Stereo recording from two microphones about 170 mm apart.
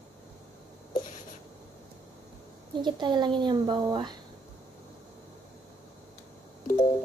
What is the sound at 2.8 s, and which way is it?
Speech, 25° right (ahead or behind).